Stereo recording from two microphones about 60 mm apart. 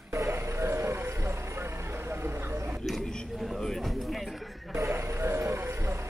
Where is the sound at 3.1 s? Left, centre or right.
Centre.